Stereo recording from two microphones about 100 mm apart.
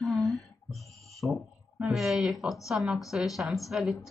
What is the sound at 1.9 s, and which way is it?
Speech, centre (ahead or behind).